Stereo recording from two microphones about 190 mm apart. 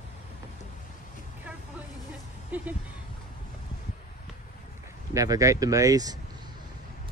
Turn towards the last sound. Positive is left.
turn(degrees=-20)  # may be behind; listen again after turning